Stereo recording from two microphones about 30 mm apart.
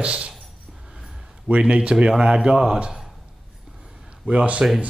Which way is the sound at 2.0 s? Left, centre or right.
Right.